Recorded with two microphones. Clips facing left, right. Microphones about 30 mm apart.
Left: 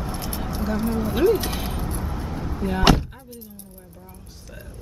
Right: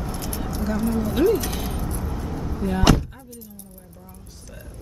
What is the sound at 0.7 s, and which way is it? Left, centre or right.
Speech, left.